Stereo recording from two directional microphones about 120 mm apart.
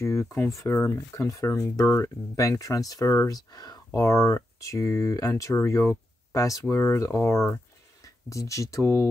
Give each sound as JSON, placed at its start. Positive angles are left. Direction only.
{"t": 0.0, "sound": "speech", "side_deg": 25}